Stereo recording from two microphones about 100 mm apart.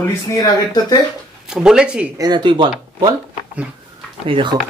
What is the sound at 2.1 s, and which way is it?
Speech, 45° right (ahead or behind).